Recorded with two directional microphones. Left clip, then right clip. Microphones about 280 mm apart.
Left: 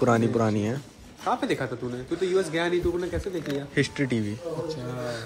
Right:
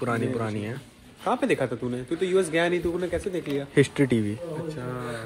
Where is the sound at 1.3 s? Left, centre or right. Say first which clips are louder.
Right 2 dB; right.